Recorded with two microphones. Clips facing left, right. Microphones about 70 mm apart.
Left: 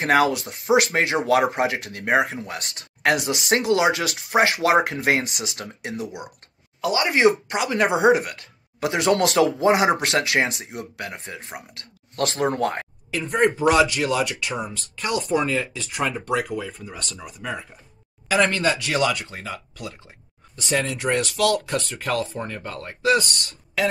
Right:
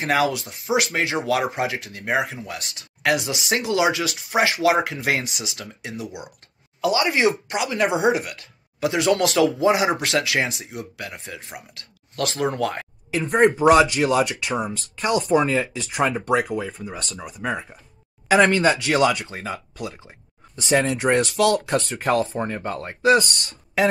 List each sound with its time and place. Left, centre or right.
0.0 s speech: left
2.1 s speech: left
11.1 s speech: left
13.2 s speech: centre
20.6 s speech: centre
23.0 s speech: centre